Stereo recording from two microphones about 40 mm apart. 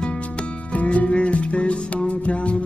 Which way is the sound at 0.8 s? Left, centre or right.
Left.